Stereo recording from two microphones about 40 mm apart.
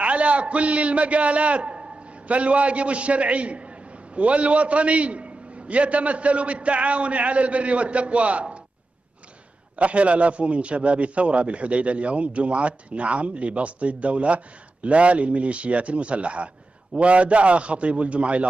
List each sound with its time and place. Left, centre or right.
0.0 s a man's voice: right
9.8 s a man's voice: right